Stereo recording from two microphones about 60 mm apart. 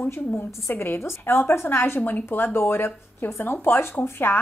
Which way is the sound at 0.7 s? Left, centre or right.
Left.